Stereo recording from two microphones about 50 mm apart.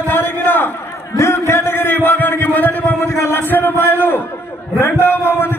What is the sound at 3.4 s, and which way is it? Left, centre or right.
A man's voice, left.